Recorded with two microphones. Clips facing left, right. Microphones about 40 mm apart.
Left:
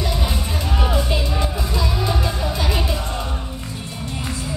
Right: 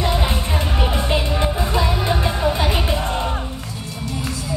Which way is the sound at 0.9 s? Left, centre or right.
Right.